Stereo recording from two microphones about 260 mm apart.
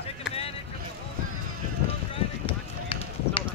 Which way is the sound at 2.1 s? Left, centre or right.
Centre.